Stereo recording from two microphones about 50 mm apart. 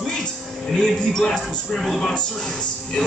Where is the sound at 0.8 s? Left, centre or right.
Centre.